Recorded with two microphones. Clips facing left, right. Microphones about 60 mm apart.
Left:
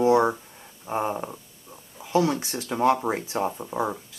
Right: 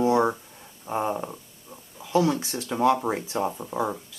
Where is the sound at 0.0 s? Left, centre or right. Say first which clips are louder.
Left 2 dB; centre.